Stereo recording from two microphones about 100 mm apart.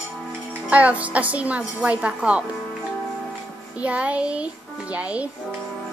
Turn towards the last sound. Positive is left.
turn(degrees=-15)  # may be behind; listen again after turning